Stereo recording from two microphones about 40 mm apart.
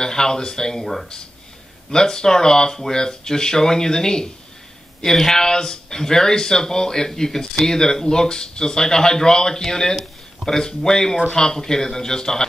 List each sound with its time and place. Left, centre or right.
0.0 s speech: centre
1.9 s speech: centre
9.9 s a sound: centre
10.6 s speech: centre